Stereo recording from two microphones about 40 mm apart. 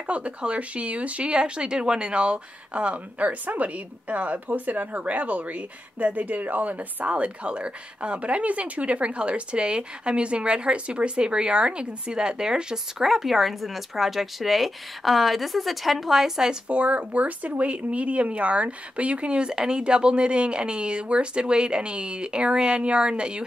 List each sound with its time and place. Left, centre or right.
0.0 s speech: right
1.3 s speech: right
12.7 s speech: centre
16.6 s speech: right